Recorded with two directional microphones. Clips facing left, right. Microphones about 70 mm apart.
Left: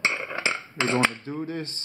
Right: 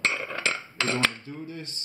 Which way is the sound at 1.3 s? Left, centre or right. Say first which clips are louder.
Left 6 dB; left.